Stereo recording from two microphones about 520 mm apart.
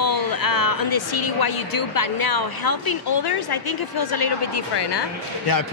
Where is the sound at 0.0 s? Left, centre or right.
Left.